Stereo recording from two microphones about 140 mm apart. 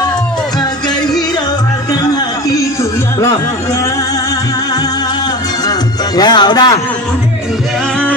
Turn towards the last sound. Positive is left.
turn(degrees=30)  # may be behind; listen again after turning